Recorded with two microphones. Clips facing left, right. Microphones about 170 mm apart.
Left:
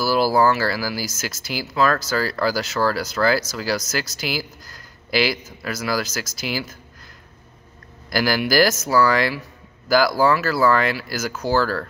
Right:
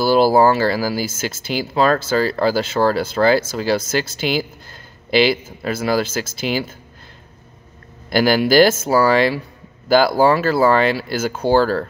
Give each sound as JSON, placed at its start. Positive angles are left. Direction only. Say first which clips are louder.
{"t": 0.0, "sound": "speech", "louder": "right 5 dB", "side_deg": -25}
{"t": 8.1, "sound": "speech", "louder": "right 6 dB", "side_deg": -25}